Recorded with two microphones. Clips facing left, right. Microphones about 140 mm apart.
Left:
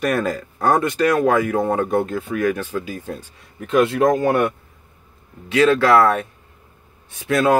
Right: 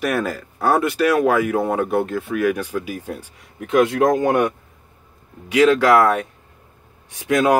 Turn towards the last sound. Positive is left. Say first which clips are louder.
# even
turn(degrees=-15)  # may be behind; listen again after turning